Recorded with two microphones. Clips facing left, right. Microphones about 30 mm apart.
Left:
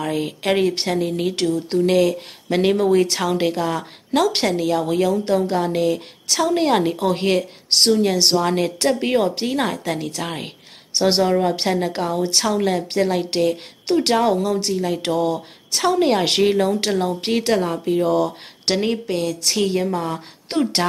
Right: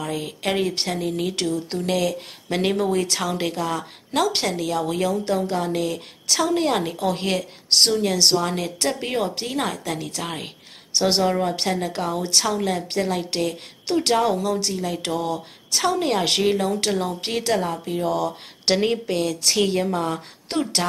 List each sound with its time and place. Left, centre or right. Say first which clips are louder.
0.0 s a woman's voice: left 4 dB; centre
1.5 s a woman's voice: left 6 dB; centre
12.1 s a woman's voice: left 1 dB; centre
18.7 s speech: even; centre
20.5 s a woman's voice: left 4 dB; centre